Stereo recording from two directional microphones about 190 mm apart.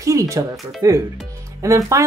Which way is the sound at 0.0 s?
15° right (ahead or behind).